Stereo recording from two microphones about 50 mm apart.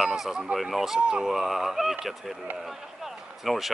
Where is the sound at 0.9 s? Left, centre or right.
Centre.